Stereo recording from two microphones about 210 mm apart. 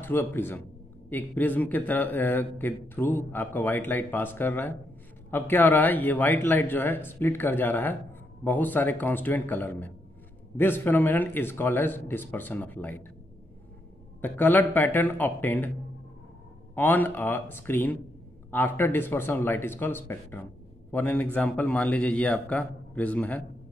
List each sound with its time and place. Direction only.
0.0 s a man's voice: 10° left (ahead or behind)
14.2 s a man's voice: 10° left (ahead or behind)
16.7 s a man's voice: 10° left (ahead or behind)